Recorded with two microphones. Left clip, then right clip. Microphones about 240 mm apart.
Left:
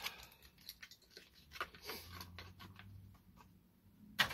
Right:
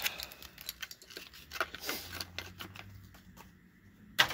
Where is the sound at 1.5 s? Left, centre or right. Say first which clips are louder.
Right 10 dB; right.